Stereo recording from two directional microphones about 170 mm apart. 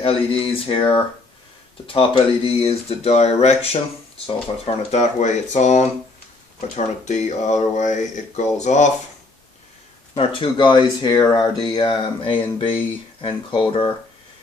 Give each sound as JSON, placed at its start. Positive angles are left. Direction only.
{"t": 0.0, "sound": "speech", "side_deg": 35}
{"t": 7.1, "sound": "speech", "side_deg": 45}
{"t": 10.1, "sound": "speech", "side_deg": 30}